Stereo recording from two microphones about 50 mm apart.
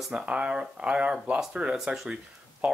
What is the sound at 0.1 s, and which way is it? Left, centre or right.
Speech, right.